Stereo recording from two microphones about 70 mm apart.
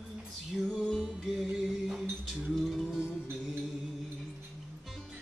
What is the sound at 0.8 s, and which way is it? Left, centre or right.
Music, centre.